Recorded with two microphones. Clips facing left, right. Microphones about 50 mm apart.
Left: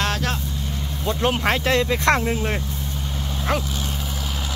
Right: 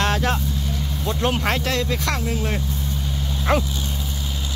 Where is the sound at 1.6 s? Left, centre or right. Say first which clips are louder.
Left 4 dB; left.